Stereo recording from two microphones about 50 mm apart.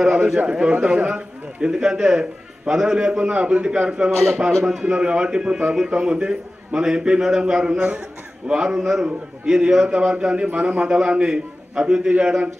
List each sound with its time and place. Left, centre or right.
0.0 s a man's voice: centre